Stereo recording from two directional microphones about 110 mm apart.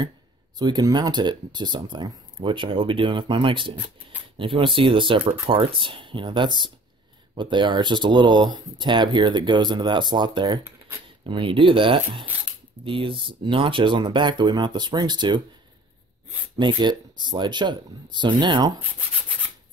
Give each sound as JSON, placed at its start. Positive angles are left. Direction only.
{"t": 0.6, "sound": "speech", "side_deg": -40}
{"t": 16.5, "sound": "speech", "side_deg": -45}